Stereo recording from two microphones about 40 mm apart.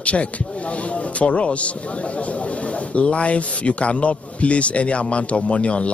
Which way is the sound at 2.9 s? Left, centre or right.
Left.